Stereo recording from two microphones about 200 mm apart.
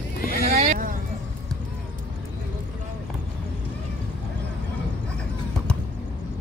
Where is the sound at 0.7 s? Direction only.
45° right (ahead or behind).